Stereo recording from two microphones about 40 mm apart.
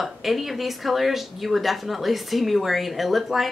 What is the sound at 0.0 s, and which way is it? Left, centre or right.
Speech, centre.